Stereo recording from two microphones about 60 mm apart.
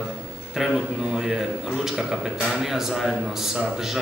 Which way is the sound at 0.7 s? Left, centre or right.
Centre.